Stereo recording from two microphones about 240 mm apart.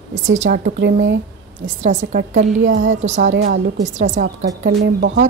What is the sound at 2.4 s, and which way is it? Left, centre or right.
Speech, right.